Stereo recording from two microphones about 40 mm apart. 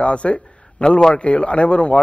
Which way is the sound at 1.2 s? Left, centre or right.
Left.